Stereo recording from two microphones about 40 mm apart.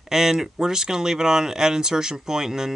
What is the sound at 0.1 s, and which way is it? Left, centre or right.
Speech, centre.